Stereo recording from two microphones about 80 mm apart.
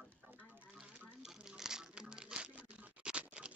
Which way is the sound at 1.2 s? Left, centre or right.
Centre.